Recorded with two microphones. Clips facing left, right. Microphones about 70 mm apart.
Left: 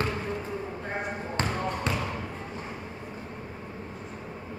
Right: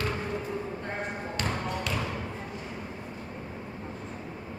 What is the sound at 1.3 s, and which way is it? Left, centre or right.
Basketball bounce, left.